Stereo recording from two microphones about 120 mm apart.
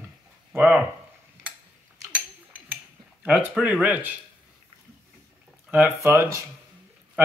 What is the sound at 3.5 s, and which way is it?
Speech, 10° right (ahead or behind).